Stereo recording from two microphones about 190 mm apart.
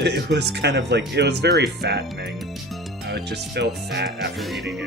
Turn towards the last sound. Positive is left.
turn(degrees=-60)  # may be behind; listen again after turning